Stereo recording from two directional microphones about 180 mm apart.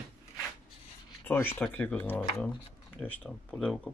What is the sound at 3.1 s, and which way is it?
Speech, centre (ahead or behind).